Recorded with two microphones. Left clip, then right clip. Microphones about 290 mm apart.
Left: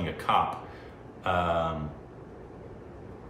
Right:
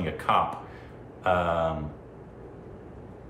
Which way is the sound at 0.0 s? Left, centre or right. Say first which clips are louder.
Right 1 dB; centre.